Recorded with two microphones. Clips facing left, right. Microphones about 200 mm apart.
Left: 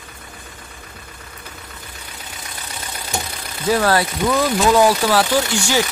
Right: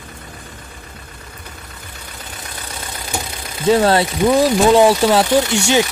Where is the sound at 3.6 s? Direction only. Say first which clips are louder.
Right 4 dB; 25° right (ahead or behind).